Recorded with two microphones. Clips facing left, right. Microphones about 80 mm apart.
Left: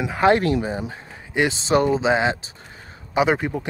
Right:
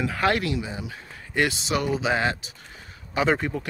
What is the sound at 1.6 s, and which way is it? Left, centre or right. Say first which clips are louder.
Speech: left 7 dB; left.